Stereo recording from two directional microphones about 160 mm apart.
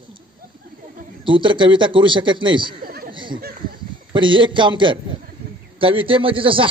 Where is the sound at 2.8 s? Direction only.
70° right (ahead or behind).